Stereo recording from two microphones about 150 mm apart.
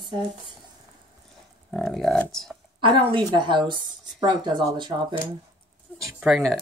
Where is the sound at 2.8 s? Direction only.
35° right (ahead or behind).